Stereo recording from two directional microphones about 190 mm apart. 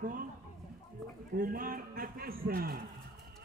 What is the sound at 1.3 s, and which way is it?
A man's voice, 50° right (ahead or behind).